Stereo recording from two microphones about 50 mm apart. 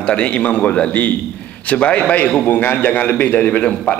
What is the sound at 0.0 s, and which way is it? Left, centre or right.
A man's voice, left.